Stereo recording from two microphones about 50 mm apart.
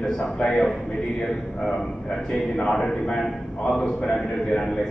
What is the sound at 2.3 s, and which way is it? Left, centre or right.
A man's voice, centre.